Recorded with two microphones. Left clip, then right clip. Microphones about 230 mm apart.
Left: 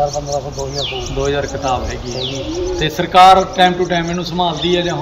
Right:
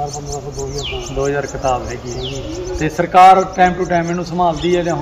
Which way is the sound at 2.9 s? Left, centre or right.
Centre.